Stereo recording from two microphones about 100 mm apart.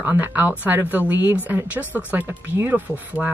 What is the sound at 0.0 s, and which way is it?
Speech, 15° right (ahead or behind).